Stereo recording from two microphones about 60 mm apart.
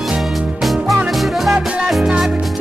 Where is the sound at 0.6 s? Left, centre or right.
Centre.